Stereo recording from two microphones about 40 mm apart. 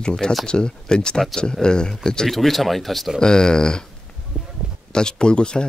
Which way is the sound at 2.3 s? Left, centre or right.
Centre.